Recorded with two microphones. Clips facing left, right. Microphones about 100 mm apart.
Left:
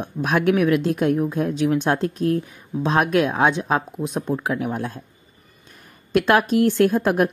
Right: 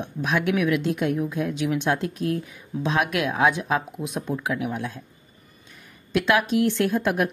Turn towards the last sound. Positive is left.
turn(degrees=40)  # may be behind; listen again after turning